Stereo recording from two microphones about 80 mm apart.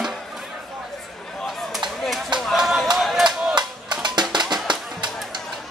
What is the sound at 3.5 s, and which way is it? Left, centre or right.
Music, right.